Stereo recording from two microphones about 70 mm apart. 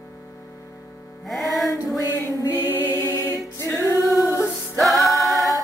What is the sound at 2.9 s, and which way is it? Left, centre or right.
Music, left.